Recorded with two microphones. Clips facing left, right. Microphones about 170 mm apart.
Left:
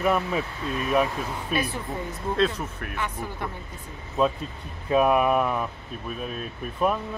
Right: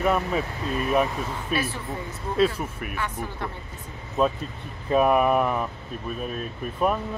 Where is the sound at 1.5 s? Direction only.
Centre (ahead or behind).